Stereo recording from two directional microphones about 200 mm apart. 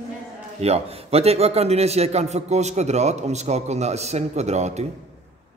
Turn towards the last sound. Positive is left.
turn(degrees=-35)  # may be behind; listen again after turning